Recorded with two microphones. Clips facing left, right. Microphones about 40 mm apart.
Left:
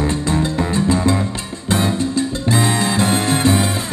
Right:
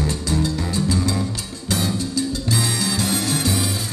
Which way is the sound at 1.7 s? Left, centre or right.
Left.